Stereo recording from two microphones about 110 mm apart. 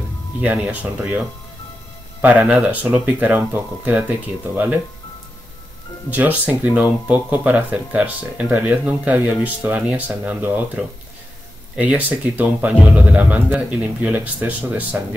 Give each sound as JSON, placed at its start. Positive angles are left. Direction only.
{"t": 0.4, "sound": "speech", "side_deg": -10}
{"t": 2.2, "sound": "speech", "side_deg": -10}
{"t": 6.0, "sound": "speech", "side_deg": -15}